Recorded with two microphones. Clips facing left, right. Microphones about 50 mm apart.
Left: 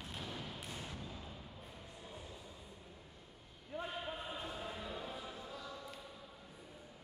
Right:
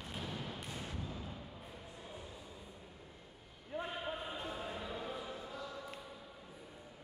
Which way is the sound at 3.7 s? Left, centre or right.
Centre.